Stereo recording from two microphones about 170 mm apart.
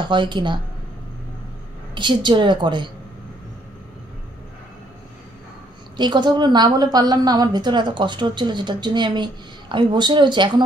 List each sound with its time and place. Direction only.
0.0 s a woman's voice: 25° right (ahead or behind)
2.0 s a woman's voice: 25° right (ahead or behind)
5.9 s a woman's voice: 25° right (ahead or behind)